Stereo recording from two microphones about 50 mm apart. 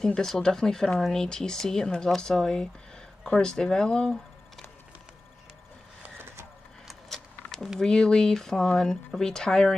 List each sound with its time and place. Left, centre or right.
0.0 s speech: centre
6.9 s a sound: centre
7.8 s speech: centre